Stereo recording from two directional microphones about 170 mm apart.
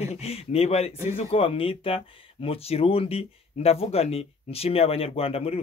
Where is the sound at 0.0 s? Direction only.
35° left (ahead or behind).